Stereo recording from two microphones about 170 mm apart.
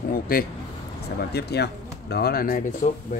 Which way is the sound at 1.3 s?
75° left (ahead or behind).